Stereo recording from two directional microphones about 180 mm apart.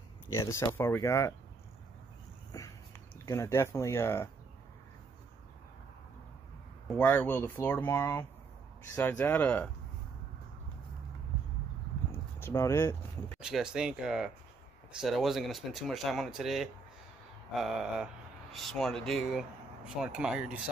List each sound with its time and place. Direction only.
0.3 s speech: 15° left (ahead or behind)
2.5 s a sound: 15° left (ahead or behind)
3.3 s speech: 15° left (ahead or behind)
6.9 s speech: 10° left (ahead or behind)
12.5 s speech: 15° left (ahead or behind)
13.4 s speech: 5° right (ahead or behind)